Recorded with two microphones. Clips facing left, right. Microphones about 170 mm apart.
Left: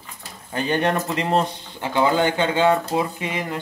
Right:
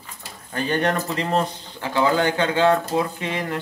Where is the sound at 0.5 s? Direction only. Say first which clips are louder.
Left 1 dB; 20° left (ahead or behind).